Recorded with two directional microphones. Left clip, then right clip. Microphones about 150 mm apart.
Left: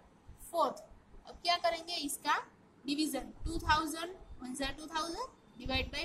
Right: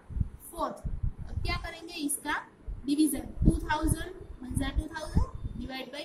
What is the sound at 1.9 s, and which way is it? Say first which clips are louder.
A woman's voice: even; 45° left (ahead or behind).